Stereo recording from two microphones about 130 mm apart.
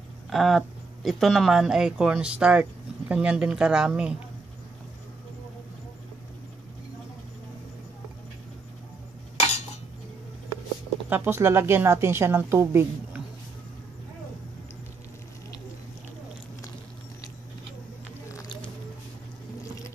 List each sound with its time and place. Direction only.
0.3 s speech: centre (ahead or behind)
11.1 s a woman's voice: 15° right (ahead or behind)
18.3 s patter: 25° left (ahead or behind)
19.6 s a sound: 25° left (ahead or behind)